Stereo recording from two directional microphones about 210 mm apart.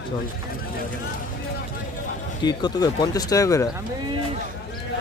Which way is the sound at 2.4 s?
20° left (ahead or behind).